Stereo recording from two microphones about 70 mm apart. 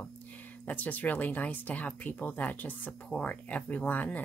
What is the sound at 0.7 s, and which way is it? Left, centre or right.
Speech, left.